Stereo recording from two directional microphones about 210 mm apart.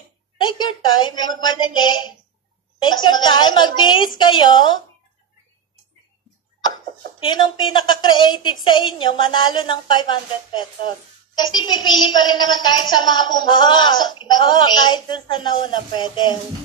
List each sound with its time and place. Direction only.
0.4 s a woman's voice: 20° left (ahead or behind)
7.2 s a woman's voice: 20° left (ahead or behind)